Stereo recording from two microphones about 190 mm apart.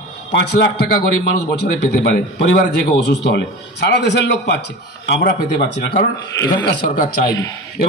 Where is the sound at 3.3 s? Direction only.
65° left (ahead or behind).